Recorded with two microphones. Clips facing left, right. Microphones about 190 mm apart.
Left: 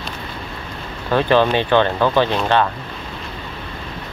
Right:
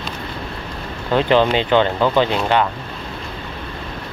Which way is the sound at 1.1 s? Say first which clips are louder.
Even; 20° right (ahead or behind).